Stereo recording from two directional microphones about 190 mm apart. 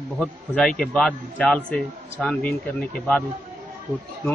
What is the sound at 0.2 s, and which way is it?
A man's voice, 5° left (ahead or behind).